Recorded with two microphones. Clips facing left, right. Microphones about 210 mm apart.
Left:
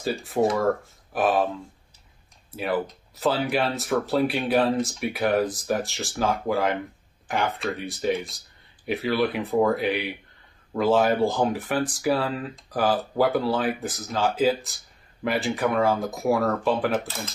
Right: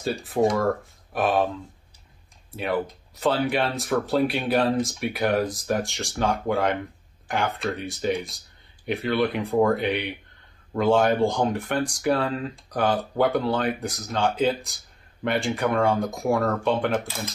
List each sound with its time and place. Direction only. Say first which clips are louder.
0.0 s speech: right 1 dB; centre (ahead or behind)
2.5 s speech: even; centre (ahead or behind)